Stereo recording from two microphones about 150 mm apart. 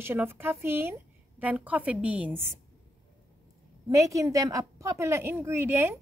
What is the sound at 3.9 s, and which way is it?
A woman's voice, 20° right (ahead or behind).